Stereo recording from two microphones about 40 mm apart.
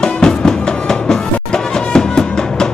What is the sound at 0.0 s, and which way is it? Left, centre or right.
Music, centre.